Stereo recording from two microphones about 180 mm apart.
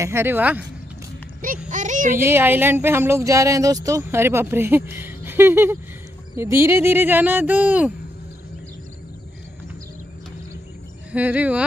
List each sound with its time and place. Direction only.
0.0 s speech: 15° right (ahead or behind)
1.7 s speech: 45° right (ahead or behind)
2.1 s speech: 15° right (ahead or behind)
11.1 s speech: 10° right (ahead or behind)